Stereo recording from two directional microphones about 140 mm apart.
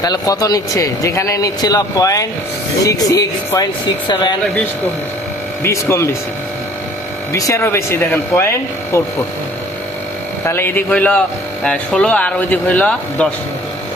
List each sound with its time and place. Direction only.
0.0 s speech: 25° left (ahead or behind)
5.6 s speech: 20° left (ahead or behind)
7.3 s speech: 20° left (ahead or behind)
10.4 s speech: 15° left (ahead or behind)